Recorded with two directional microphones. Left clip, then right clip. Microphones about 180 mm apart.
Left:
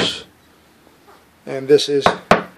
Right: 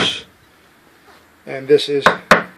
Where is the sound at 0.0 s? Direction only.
10° left (ahead or behind).